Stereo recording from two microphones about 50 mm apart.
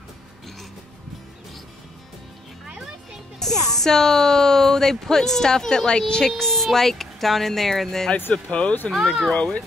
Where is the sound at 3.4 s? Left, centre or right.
Centre.